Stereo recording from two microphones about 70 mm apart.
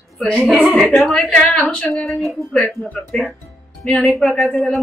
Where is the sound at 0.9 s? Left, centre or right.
Centre.